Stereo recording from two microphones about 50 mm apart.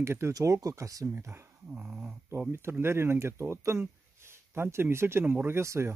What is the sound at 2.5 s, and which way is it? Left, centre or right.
Speech, right.